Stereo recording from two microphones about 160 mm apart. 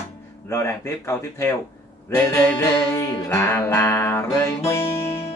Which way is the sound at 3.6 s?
15° left (ahead or behind).